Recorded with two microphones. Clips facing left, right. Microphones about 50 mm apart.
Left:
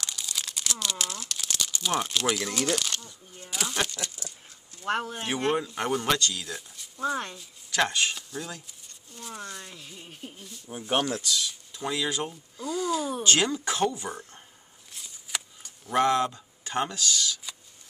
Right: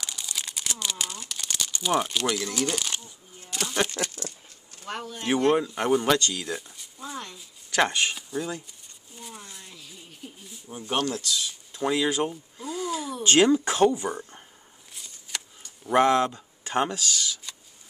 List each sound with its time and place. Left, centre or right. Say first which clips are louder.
0.0 s crumpling: even; centre
3.4 s a sound: right 2 dB; centre
4.0 s speech: right 6 dB; right
4.8 s speech: left 6 dB; left
5.5 s speech: right 3 dB; centre
9.1 s a sound: left 2 dB; centre
9.8 s a sound: left 1 dB; left
10.9 s speech: even; centre
11.3 s speech: right 1 dB; centre
12.6 s gasp: left 2 dB; right
13.2 s speech: right 10 dB; centre
15.0 s a sound: left 1 dB; centre
15.8 s speech: right 3 dB; centre